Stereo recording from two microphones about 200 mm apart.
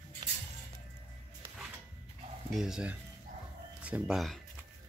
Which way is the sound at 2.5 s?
Centre (ahead or behind).